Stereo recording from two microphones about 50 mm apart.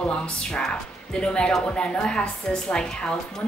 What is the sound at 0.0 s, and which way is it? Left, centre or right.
A woman's voice, centre.